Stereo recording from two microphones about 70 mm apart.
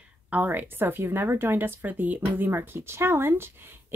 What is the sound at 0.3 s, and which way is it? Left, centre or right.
Speech, right.